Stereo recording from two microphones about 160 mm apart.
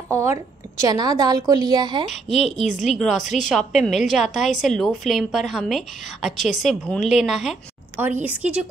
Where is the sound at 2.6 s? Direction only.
50° left (ahead or behind).